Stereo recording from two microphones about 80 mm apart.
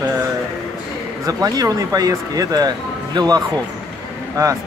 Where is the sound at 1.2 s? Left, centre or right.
Right.